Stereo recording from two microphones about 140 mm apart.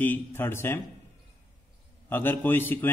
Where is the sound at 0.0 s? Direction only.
15° left (ahead or behind).